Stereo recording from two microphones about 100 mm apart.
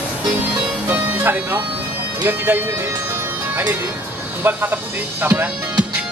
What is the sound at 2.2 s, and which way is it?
Speech, 20° right (ahead or behind).